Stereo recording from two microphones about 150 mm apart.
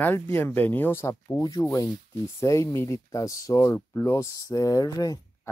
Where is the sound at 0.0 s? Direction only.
15° left (ahead or behind).